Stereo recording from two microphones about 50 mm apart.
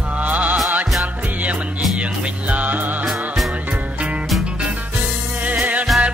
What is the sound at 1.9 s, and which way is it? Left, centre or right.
Music, right.